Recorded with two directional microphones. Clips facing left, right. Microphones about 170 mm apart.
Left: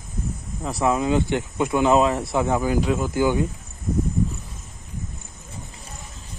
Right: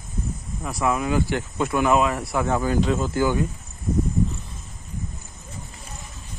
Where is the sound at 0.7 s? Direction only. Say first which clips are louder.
Left 2 dB; 25° left (ahead or behind).